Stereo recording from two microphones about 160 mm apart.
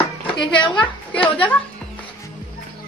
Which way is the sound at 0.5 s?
30° left (ahead or behind).